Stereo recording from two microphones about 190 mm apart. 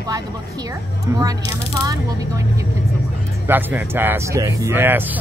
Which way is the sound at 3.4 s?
10° right (ahead or behind).